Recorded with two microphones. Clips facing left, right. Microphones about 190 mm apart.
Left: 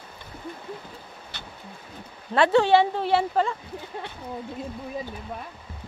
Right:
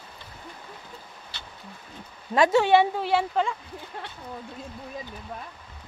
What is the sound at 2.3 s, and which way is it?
Speech, 10° right (ahead or behind).